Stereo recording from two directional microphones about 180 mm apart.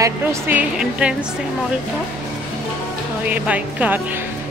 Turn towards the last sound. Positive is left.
turn(degrees=-10)  # may be behind; listen again after turning